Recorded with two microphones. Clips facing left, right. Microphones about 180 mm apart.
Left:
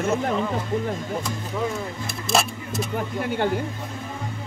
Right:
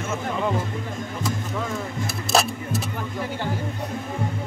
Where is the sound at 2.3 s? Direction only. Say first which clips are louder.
Right 1 dB; centre (ahead or behind).